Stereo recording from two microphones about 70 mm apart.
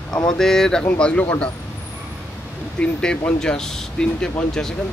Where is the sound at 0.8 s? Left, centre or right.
Centre.